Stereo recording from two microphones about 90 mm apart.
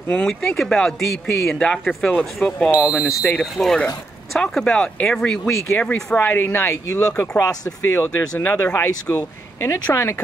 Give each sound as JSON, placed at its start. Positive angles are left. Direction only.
{"t": 0.1, "sound": "speech", "side_deg": 10}
{"t": 2.9, "sound": "speech", "side_deg": 0}
{"t": 6.1, "sound": "speech", "side_deg": 20}